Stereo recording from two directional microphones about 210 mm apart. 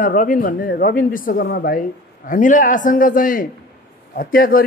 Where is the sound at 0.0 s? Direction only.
40° left (ahead or behind).